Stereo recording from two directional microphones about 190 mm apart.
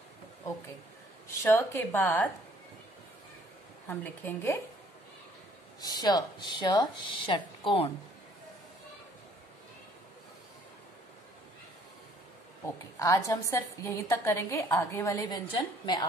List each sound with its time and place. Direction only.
1.4 s a woman's voice: 10° left (ahead or behind)
3.8 s a woman's voice: 10° left (ahead or behind)
5.8 s speech: 20° left (ahead or behind)
13.0 s a woman's voice: 15° left (ahead or behind)